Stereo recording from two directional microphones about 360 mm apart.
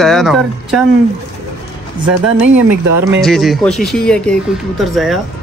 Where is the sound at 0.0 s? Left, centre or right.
Centre.